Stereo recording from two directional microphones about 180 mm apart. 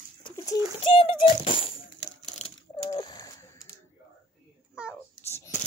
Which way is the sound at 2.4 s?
40° left (ahead or behind).